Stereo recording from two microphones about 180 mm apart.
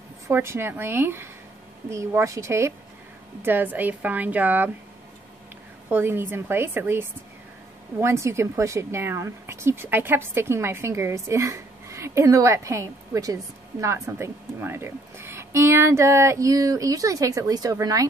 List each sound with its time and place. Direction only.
0.3 s a woman's voice: 15° right (ahead or behind)
5.9 s a woman's voice: 10° right (ahead or behind)